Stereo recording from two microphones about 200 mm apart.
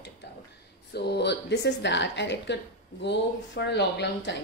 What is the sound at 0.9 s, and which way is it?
A woman's voice, 55° left (ahead or behind).